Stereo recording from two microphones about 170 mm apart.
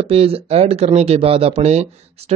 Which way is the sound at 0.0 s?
35° right (ahead or behind).